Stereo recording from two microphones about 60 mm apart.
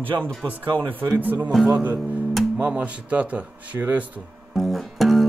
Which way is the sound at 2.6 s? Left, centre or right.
Right.